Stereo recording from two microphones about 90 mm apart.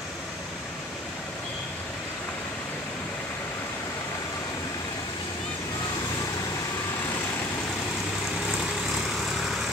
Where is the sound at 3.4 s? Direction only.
25° left (ahead or behind); by 5.2 s 50° left (ahead or behind).